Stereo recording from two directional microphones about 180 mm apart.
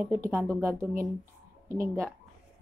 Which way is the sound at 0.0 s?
10° right (ahead or behind).